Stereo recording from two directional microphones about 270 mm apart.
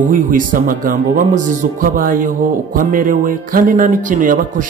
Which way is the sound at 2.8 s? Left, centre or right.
Right.